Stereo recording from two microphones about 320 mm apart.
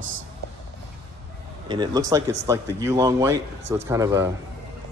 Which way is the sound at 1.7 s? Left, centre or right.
Centre.